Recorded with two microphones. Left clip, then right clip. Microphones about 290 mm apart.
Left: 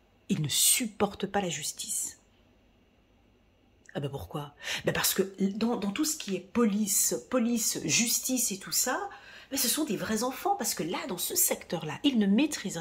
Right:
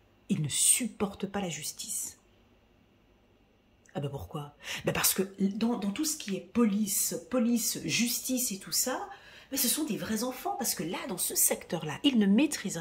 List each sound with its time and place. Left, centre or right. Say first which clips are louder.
0.3 s speech: left 3 dB; centre
3.8 s speech: left 1 dB; centre